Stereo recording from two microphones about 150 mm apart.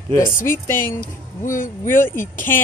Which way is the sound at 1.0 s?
65° left (ahead or behind).